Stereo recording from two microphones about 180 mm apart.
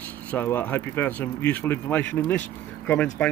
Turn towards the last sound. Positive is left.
turn(degrees=10)  # may be behind; listen again after turning